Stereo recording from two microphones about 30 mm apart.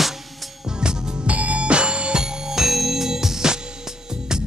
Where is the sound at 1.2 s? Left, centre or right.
Right.